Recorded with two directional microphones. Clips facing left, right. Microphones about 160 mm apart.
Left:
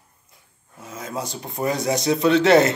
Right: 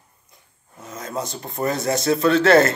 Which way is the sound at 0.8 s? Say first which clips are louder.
Right 1 dB; 10° left (ahead or behind).